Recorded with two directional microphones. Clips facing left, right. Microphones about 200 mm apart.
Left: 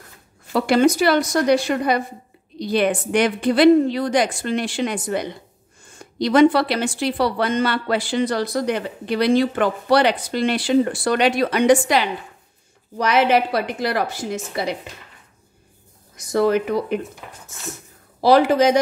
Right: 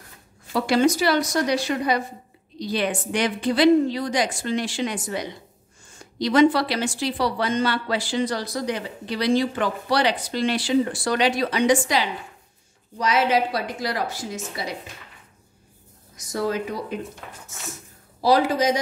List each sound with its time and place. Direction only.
0.5 s speech: 55° left (ahead or behind)
16.3 s speech: 65° left (ahead or behind)
18.2 s speech: 65° left (ahead or behind)